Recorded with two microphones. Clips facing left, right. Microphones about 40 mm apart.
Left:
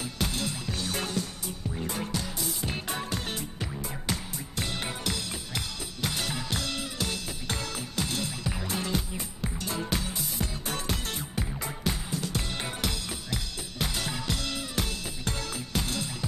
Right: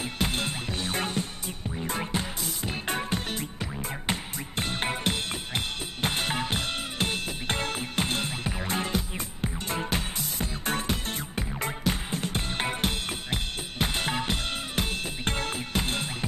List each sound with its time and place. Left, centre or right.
0.2 s music: right
11.9 s drum kit: right